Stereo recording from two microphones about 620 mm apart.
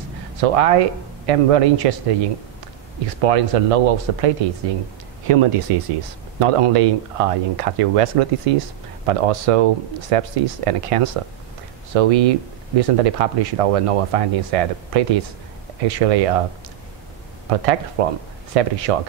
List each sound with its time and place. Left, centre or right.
0.4 s speech: right
3.2 s speech: right
5.3 s speech: right
17.5 s speech: right